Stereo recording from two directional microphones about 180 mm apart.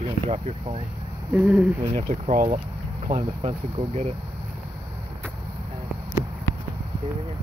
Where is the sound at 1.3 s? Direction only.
5° right (ahead or behind).